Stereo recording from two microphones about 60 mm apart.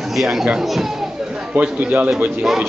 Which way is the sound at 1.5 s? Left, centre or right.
Right.